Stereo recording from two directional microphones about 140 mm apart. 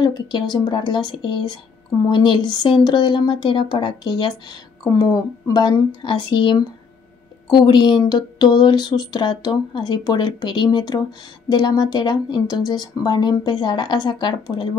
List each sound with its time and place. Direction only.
0.0 s a woman's voice: 30° left (ahead or behind)